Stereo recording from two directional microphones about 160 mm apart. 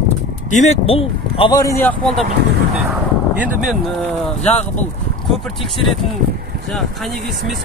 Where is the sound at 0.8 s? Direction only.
35° left (ahead or behind).